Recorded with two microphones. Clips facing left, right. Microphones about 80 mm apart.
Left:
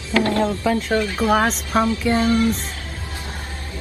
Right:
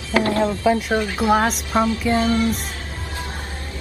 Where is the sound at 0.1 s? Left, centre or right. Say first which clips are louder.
Even; right.